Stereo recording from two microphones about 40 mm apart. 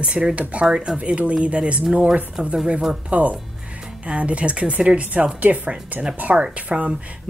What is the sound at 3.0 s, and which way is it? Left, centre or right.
A woman's voice, right.